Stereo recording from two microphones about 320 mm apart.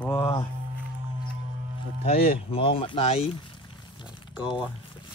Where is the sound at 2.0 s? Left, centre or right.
Centre.